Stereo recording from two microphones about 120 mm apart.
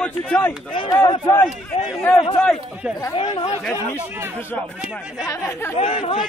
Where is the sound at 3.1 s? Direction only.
50° left (ahead or behind).